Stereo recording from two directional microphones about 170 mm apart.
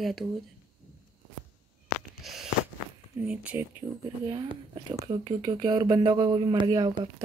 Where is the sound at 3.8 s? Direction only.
30° right (ahead or behind).